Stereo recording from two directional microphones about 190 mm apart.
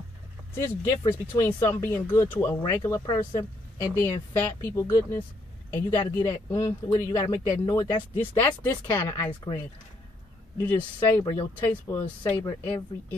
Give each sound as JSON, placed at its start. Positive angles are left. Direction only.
{"t": 0.6, "sound": "speech", "side_deg": 15}
{"t": 10.6, "sound": "speech", "side_deg": 10}